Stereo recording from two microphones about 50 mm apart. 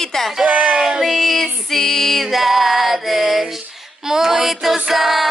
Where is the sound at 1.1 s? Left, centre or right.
Centre.